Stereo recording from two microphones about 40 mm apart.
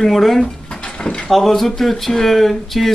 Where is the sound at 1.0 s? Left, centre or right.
Left.